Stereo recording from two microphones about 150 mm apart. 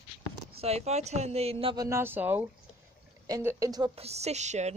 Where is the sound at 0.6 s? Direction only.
45° right (ahead or behind).